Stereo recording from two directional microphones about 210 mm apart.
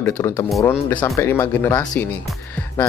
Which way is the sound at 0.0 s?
10° left (ahead or behind).